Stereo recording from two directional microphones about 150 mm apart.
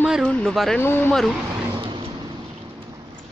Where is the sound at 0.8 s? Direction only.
10° left (ahead or behind).